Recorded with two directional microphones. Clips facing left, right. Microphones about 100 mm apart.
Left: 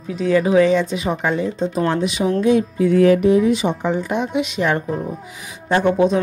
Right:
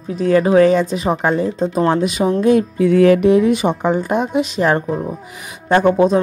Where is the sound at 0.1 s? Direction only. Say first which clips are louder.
Right 3 dB; 45° right (ahead or behind).